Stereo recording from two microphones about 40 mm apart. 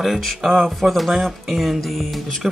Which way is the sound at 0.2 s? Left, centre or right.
Centre.